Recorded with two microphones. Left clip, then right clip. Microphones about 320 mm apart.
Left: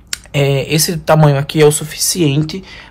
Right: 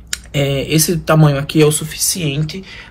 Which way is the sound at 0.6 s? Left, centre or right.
Centre.